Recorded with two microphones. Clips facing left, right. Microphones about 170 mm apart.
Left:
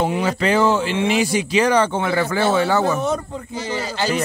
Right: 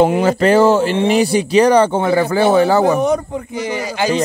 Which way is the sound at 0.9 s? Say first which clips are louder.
Right 5 dB; 35° right (ahead or behind).